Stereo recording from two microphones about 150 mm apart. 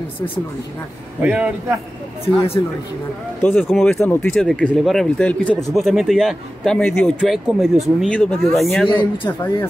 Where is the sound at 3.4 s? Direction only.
10° left (ahead or behind).